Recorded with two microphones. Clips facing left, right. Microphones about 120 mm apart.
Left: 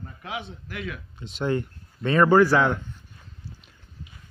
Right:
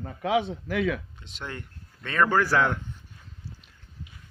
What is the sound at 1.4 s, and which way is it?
Speech, 25° left (ahead or behind).